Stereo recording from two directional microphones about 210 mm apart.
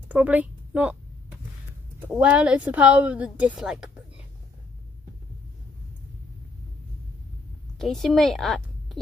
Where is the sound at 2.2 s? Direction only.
5° right (ahead or behind).